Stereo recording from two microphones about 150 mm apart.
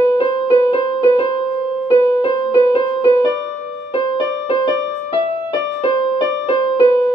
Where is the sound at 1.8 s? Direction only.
35° left (ahead or behind).